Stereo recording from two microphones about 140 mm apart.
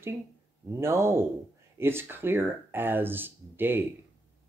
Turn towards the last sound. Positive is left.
turn(degrees=-15)  # may be behind; listen again after turning